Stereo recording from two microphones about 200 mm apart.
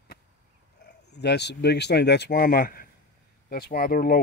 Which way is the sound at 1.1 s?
55° left (ahead or behind).